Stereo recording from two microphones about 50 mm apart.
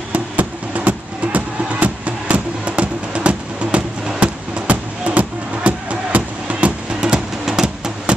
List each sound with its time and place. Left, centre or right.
0.1 s music: right; by 7.9 s centre